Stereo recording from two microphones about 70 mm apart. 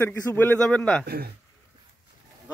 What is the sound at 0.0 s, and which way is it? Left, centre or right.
Speech, left.